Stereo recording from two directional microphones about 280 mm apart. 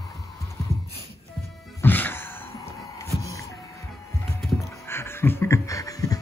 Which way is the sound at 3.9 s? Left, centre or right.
Centre.